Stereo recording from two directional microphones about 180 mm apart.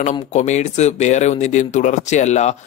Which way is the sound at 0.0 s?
40° left (ahead or behind).